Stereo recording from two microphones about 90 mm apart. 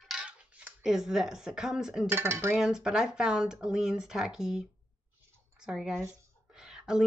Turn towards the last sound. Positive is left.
turn(degrees=-5)  # may be behind; listen again after turning